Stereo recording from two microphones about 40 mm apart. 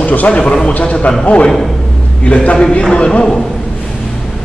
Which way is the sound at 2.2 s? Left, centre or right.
Left.